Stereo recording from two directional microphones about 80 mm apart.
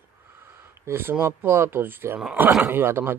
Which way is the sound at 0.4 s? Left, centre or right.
Right.